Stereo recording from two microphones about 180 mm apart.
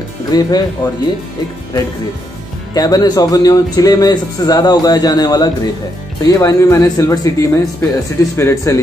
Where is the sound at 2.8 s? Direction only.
20° left (ahead or behind).